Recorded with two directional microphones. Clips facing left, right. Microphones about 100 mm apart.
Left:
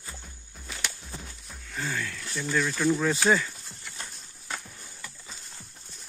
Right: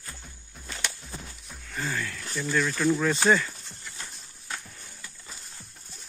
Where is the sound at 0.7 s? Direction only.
5° left (ahead or behind).